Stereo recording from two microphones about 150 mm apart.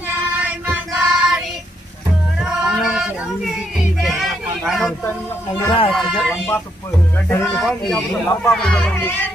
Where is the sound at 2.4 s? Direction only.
5° right (ahead or behind).